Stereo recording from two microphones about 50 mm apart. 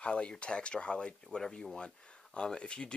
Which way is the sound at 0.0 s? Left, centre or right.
Left.